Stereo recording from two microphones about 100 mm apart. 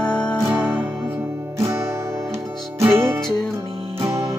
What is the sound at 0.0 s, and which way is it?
Music, 10° left (ahead or behind).